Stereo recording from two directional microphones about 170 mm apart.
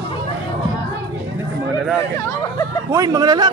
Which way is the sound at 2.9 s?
20° right (ahead or behind).